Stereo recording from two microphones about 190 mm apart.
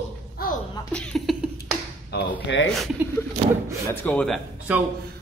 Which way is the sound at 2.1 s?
65° left (ahead or behind).